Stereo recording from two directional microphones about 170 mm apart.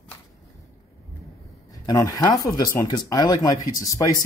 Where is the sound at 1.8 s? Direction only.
20° left (ahead or behind).